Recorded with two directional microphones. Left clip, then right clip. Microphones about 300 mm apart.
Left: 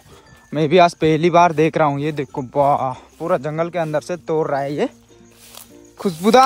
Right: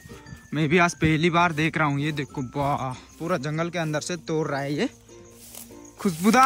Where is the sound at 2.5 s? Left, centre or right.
Left.